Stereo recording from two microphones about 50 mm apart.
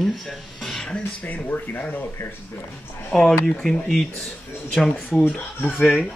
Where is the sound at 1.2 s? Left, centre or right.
Left.